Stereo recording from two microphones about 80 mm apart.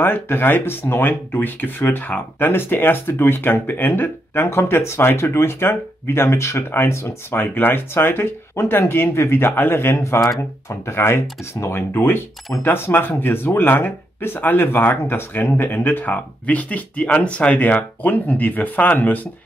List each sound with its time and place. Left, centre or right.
0.0 s speech: left